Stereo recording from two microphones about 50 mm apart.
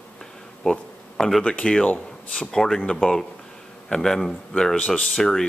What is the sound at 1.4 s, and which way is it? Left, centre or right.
Speech, centre.